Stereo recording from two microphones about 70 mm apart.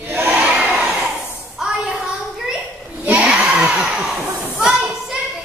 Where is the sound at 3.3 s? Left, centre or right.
Centre.